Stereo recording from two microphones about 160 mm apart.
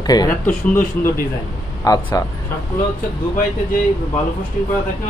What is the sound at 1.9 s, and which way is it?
Speech, 20° left (ahead or behind).